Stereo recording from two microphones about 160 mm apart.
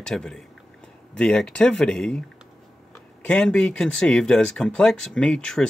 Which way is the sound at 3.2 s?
5° left (ahead or behind).